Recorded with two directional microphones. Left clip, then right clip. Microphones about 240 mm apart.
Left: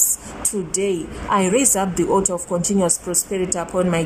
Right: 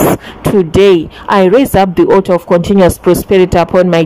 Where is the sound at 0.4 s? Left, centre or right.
Right.